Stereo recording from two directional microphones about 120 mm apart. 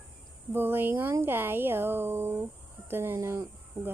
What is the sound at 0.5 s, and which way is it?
Speech, 15° right (ahead or behind).